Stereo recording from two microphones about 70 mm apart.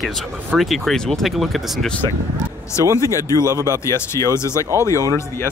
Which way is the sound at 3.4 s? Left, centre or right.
Right.